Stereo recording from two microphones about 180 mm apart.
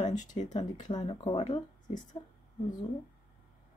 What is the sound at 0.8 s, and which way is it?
Speech, 25° left (ahead or behind).